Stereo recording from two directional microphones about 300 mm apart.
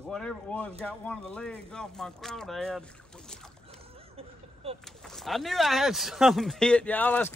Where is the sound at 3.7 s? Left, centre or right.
Centre.